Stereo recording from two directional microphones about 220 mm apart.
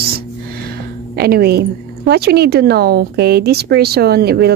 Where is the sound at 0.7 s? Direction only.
45° right (ahead or behind).